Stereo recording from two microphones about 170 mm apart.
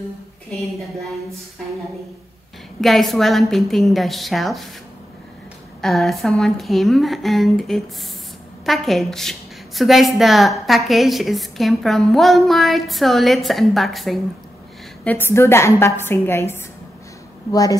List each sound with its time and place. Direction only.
0.5 s a woman's voice: centre (ahead or behind)
2.8 s a woman's voice: centre (ahead or behind)
5.8 s a woman's voice: centre (ahead or behind)
15.0 s a woman's voice: 15° left (ahead or behind)